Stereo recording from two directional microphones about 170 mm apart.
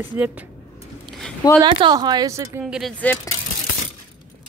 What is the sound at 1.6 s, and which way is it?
Speech, 30° right (ahead or behind).